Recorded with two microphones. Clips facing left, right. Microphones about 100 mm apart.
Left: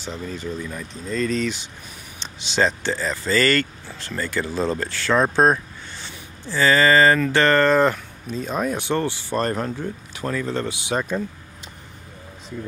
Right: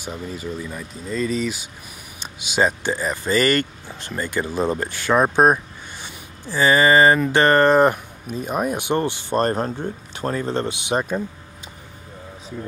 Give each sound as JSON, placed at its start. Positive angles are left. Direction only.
{"t": 0.0, "sound": "speech", "side_deg": -10}
{"t": 9.5, "sound": "a man's voice", "side_deg": -30}
{"t": 10.5, "sound": "speech", "side_deg": -20}